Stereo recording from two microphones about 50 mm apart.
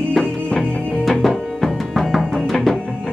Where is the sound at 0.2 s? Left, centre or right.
Centre.